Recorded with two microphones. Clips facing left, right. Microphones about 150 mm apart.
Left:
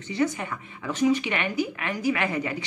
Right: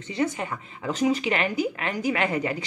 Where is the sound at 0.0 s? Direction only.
30° right (ahead or behind).